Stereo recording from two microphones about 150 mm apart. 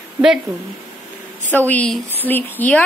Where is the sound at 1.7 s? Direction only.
10° left (ahead or behind).